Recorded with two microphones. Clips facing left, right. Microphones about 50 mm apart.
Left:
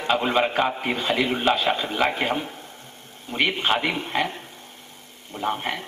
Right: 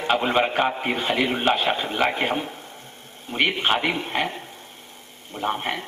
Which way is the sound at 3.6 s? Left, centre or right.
Right.